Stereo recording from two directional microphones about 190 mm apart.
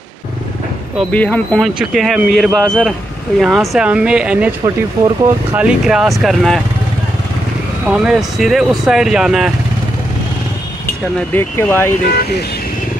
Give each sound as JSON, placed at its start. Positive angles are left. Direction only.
{"t": 0.9, "sound": "speech", "side_deg": 5}
{"t": 7.8, "sound": "speech", "side_deg": -5}
{"t": 11.3, "sound": "speech", "side_deg": 10}
{"t": 12.1, "sound": "speech", "side_deg": 55}